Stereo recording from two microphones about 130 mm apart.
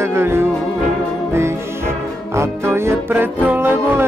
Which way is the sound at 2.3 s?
20° right (ahead or behind).